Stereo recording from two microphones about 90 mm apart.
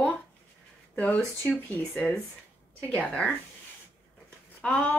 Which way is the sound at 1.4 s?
20° left (ahead or behind).